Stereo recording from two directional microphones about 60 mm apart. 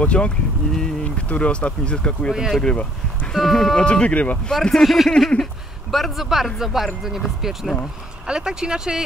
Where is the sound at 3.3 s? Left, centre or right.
Centre.